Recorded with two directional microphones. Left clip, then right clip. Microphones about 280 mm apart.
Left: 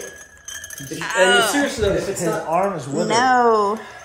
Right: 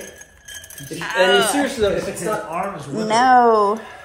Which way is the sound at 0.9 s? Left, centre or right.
Centre.